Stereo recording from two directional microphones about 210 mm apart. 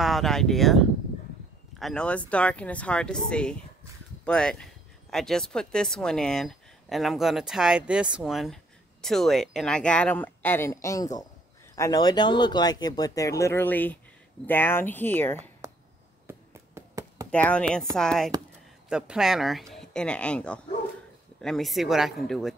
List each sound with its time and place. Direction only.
0.0 s speech: centre (ahead or behind)
16.3 s a sound: 15° right (ahead or behind)
17.3 s speech: 5° left (ahead or behind)